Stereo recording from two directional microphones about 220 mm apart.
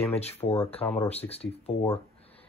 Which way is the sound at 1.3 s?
25° left (ahead or behind).